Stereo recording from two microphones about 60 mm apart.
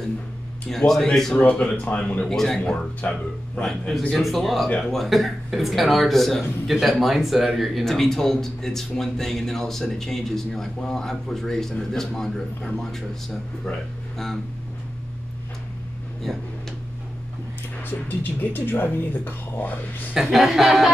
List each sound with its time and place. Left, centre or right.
0.7 s speech: centre
1.3 s speech: centre
2.2 s speech: centre
2.6 s speech: centre
4.1 s speech: centre
14.1 s speech: centre
17.8 s speech: left
20.2 s speech: centre